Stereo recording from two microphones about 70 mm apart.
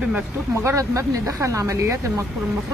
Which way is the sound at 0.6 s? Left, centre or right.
Right.